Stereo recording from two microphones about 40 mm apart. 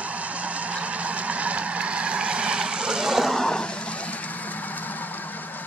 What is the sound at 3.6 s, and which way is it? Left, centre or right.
Vehicle, left.